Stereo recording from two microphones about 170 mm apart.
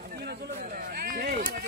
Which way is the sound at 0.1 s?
70° right (ahead or behind).